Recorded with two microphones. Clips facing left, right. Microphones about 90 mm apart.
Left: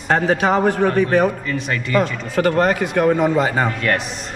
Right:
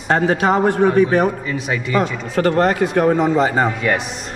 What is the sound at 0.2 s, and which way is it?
A man's voice, 10° right (ahead or behind).